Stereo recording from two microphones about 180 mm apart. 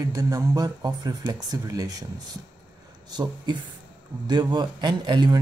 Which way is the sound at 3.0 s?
25° right (ahead or behind).